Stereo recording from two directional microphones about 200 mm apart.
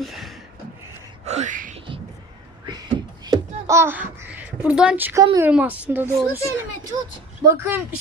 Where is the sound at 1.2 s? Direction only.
35° right (ahead or behind).